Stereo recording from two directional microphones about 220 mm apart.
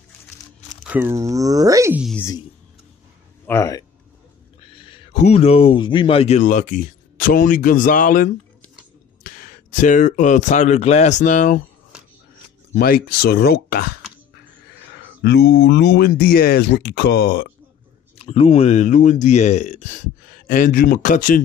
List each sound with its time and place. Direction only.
0.8 s speech: 10° right (ahead or behind)
2.0 s speech: 10° left (ahead or behind)
3.4 s speech: 15° left (ahead or behind)
4.7 s speech: 25° left (ahead or behind)
12.7 s speech: 45° left (ahead or behind)
15.2 s speech: 50° left (ahead or behind)
18.1 s speech: 25° left (ahead or behind)